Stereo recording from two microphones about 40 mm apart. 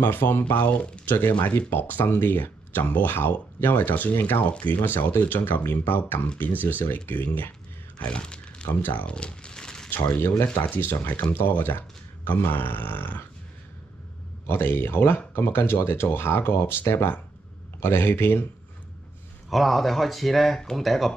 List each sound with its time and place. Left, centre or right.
0.0 s speech: left
0.6 s speech: left
1.0 s speech: left
7.1 s speech: left
8.1 s crumpling: left
8.6 s speech: left
9.0 s crumpling: left
9.8 s speech: left
11.2 s speech: left
14.4 s a man's voice: left
15.3 s a man's voice: left
19.5 s speech: centre